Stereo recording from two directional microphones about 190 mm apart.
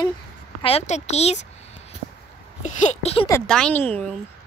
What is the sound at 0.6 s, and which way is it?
Speech, 35° left (ahead or behind).